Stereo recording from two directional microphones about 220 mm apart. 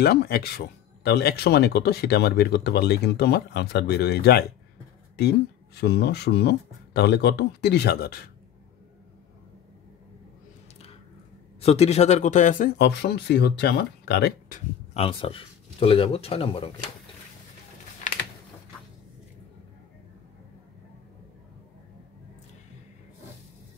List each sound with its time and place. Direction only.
0.0 s speech: 45° left (ahead or behind)
5.8 s speech: 50° left (ahead or behind)
11.6 s speech: 30° left (ahead or behind); by 14.6 s 50° left (ahead or behind)
15.0 s speech: 25° left (ahead or behind)
18.1 s typing: 30° left (ahead or behind)